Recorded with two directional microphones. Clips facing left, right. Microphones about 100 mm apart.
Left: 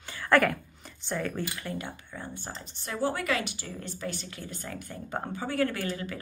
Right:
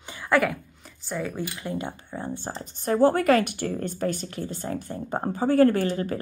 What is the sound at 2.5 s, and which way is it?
Speech, 45° right (ahead or behind).